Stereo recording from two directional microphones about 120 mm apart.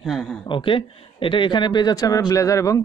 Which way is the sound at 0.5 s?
45° left (ahead or behind).